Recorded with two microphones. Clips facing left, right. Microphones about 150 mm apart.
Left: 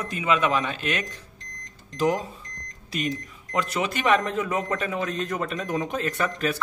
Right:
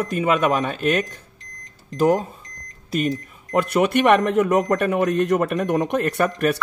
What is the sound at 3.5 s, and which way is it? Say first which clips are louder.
A man's voice: right 8 dB; 55° right (ahead or behind).